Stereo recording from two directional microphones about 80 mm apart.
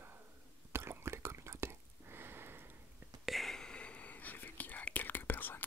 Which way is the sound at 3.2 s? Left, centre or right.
Centre.